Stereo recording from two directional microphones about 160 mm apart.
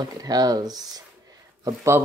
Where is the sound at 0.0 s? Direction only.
25° right (ahead or behind).